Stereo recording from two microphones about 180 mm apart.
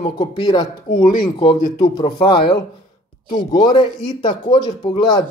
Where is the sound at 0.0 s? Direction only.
25° left (ahead or behind).